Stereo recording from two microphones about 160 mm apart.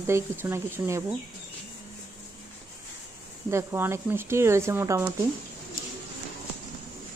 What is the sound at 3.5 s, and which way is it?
Speech, 15° right (ahead or behind).